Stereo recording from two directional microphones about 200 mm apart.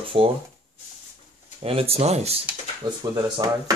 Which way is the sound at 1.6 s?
30° right (ahead or behind).